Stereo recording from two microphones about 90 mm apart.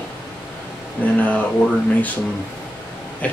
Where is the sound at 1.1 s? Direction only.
15° left (ahead or behind).